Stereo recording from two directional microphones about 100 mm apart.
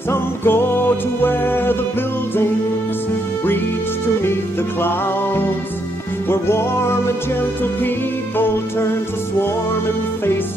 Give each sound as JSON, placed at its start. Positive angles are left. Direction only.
{"t": 0.1, "sound": "music", "side_deg": 20}
{"t": 6.2, "sound": "music", "side_deg": 25}